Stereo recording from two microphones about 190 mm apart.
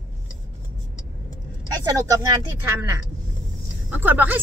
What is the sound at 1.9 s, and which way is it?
Speech, 20° right (ahead or behind).